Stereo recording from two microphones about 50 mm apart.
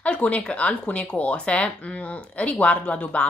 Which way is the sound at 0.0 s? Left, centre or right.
Left.